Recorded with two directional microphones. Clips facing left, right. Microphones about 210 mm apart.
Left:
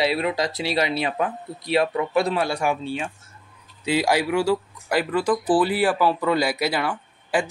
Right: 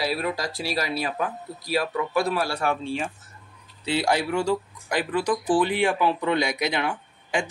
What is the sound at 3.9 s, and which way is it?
Speech, 10° left (ahead or behind).